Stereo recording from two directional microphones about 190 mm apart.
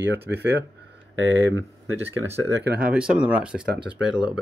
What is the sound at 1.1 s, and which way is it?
Speech, 75° right (ahead or behind).